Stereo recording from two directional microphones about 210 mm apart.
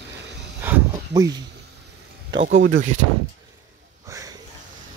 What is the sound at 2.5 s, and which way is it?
Speech, 65° right (ahead or behind).